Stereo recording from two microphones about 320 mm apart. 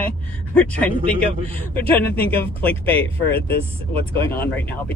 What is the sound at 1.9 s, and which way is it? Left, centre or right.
Speech, centre.